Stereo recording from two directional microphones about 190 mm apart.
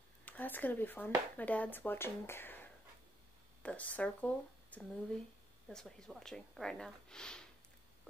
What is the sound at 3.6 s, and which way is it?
Speech, 5° left (ahead or behind).